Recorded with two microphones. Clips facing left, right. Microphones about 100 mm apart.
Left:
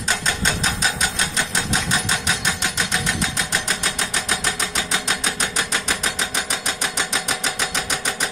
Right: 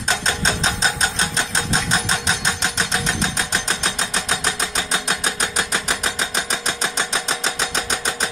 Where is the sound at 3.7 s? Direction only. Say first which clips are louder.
Right 1 dB; 25° right (ahead or behind).